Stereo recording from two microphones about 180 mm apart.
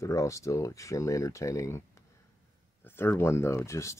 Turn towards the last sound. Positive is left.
turn(degrees=15)  # may be behind; listen again after turning